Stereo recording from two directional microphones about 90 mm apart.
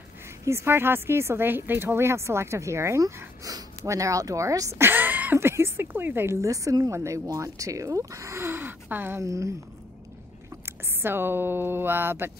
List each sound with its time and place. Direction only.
0.5 s a woman's voice: 30° right (ahead or behind)
9.2 s a woman's voice: 35° right (ahead or behind)
10.6 s speech: 25° right (ahead or behind)